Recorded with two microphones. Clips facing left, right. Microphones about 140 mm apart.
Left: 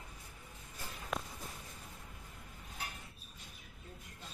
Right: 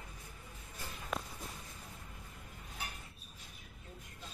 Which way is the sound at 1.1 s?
Centre (ahead or behind).